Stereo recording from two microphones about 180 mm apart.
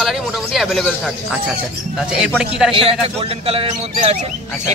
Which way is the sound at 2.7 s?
30° right (ahead or behind).